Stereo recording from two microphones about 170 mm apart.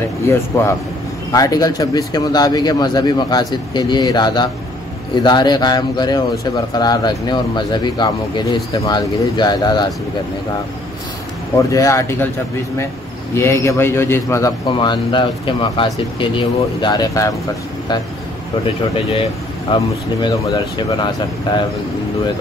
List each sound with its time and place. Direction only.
0.3 s a man's voice: 15° left (ahead or behind)
11.5 s a man's voice: 20° left (ahead or behind)
13.3 s a man's voice: 15° left (ahead or behind)
14.7 s speech: 25° left (ahead or behind)
19.7 s speech: 25° left (ahead or behind)